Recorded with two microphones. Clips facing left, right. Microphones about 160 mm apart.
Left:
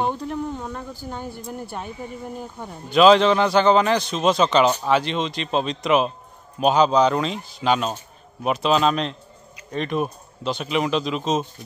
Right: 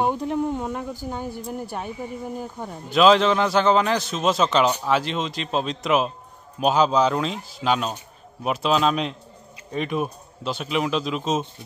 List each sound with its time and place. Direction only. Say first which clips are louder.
0.0 s speech: right 2 dB; 15° right (ahead or behind)